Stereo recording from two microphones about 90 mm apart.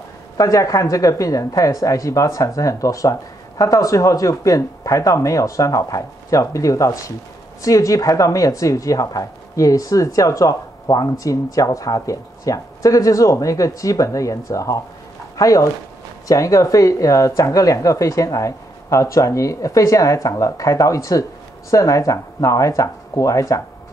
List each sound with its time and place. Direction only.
0.4 s a woman's voice: 40° left (ahead or behind)